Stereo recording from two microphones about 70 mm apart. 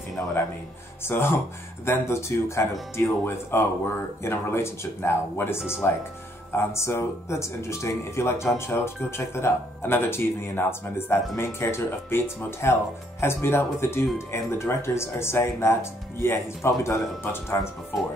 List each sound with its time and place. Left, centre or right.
0.2 s speech: left